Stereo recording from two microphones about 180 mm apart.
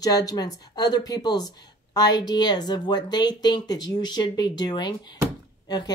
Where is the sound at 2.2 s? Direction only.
25° left (ahead or behind).